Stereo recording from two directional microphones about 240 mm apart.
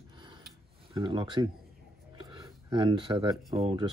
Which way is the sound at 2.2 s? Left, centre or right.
Centre.